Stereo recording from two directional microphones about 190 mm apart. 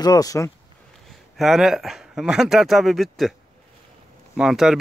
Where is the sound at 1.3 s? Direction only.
Centre (ahead or behind).